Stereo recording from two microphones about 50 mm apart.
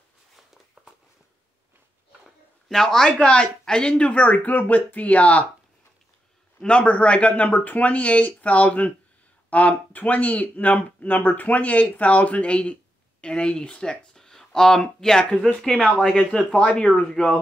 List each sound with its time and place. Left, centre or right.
2.7 s speech: centre
3.1 s speech: left
6.6 s speech: left; by 16.5 s centre
16.5 s speech: left